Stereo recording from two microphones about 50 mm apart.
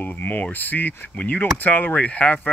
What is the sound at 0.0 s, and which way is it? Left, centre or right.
Speech, left.